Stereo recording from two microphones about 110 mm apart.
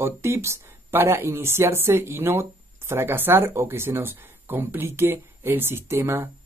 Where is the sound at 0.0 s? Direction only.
25° right (ahead or behind).